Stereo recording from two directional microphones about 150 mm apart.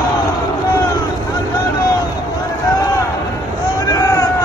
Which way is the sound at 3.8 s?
25° left (ahead or behind).